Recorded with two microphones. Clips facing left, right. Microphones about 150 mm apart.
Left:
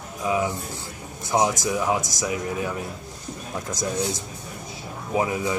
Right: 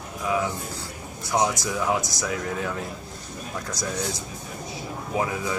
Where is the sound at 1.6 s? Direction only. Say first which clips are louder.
Left 2 dB; 15° left (ahead or behind).